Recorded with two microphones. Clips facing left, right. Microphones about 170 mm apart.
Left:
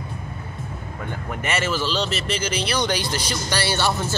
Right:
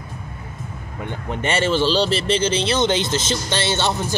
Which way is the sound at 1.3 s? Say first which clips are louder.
Right 5 dB; 30° right (ahead or behind).